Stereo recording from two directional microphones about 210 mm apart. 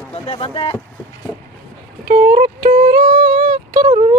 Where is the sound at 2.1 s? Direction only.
40° right (ahead or behind).